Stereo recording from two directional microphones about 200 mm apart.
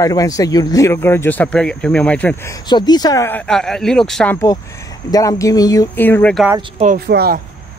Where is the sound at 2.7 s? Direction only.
20° left (ahead or behind); by 4.4 s 5° left (ahead or behind).